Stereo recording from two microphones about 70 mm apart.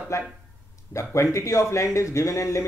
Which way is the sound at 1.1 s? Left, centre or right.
Left.